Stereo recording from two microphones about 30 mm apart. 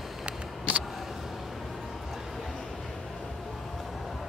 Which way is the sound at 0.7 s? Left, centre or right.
Right.